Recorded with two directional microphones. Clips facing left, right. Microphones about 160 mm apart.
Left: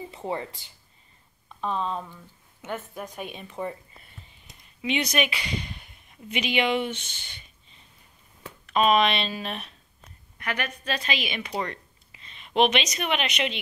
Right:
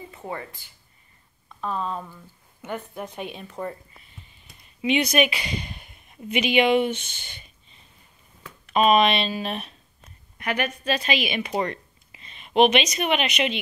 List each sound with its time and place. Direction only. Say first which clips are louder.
0.1 s speech: left 3 dB; 20° left (ahead or behind)
1.6 s speech: even; 5° right (ahead or behind)
3.3 s speech: right 1 dB; 10° left (ahead or behind)
4.8 s speech: right 5 dB; 10° right (ahead or behind)
7.0 s speech: right 2 dB; 50° right (ahead or behind)
8.7 s speech: right 3 dB; 10° right (ahead or behind)
11.5 s speech: right 4 dB; 25° right (ahead or behind)
12.4 s speech: right 4 dB; 10° right (ahead or behind)